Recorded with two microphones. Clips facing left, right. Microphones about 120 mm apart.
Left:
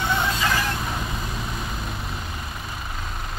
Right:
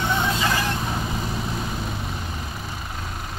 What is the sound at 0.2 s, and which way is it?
Vehicle, 15° right (ahead or behind).